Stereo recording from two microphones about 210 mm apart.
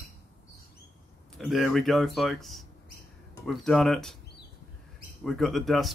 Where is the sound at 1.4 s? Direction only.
Centre (ahead or behind).